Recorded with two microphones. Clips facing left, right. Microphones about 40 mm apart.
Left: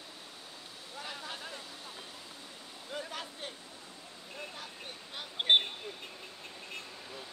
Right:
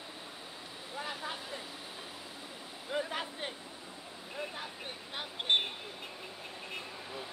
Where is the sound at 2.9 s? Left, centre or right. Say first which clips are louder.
Right 5 dB; right.